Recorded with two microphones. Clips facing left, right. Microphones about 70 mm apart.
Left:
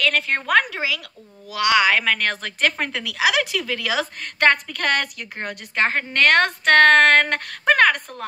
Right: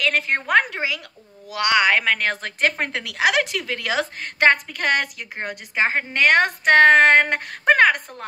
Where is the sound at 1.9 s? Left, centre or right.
Centre.